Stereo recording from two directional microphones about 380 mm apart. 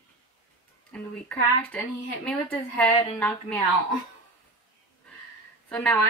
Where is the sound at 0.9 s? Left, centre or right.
Centre.